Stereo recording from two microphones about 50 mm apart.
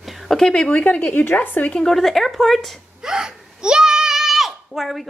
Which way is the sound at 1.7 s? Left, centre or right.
Centre.